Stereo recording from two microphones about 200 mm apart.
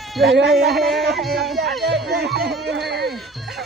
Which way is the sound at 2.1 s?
55° right (ahead or behind).